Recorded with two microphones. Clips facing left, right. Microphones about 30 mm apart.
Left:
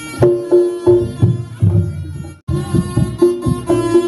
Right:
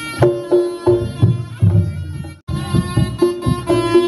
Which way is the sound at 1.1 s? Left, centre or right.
Right.